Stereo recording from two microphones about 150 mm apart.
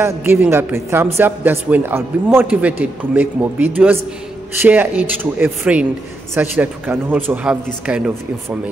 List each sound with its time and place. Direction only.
0.0 s a man's voice: 15° right (ahead or behind)